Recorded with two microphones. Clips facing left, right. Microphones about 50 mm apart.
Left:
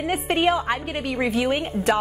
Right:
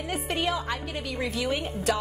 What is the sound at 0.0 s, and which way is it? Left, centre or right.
A woman's voice, left.